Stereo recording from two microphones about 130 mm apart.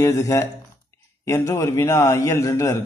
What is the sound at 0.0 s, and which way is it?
Mantra, 25° left (ahead or behind).